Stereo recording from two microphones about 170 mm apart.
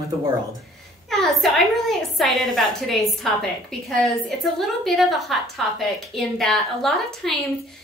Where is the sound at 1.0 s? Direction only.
Centre (ahead or behind).